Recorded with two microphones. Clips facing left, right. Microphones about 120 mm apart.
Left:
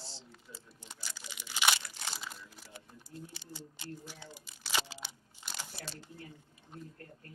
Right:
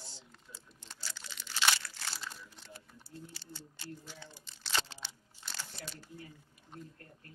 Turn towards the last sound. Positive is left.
turn(degrees=10)  # may be behind; listen again after turning